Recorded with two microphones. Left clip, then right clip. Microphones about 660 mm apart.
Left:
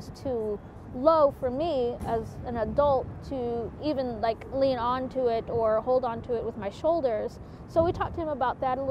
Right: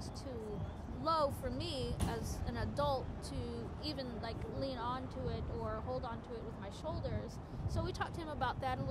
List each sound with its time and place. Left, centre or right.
0.2 s a woman's voice: left